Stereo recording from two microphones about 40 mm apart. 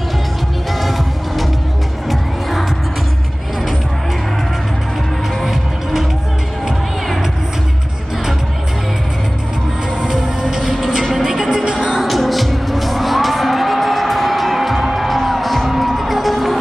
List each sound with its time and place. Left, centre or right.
0.7 s music: centre
5.4 s music: centre
10.4 s music: centre
11.9 s music: centre